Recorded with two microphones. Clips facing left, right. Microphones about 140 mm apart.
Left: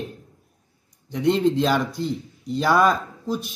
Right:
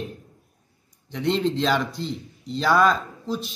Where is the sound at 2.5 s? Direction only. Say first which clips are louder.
Left 1 dB; 10° left (ahead or behind).